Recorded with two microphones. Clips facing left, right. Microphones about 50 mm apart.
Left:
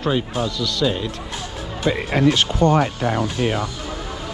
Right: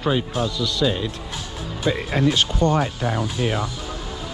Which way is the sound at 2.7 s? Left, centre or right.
Left.